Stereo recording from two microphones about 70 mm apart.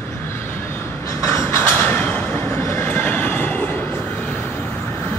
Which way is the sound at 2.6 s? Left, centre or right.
Left.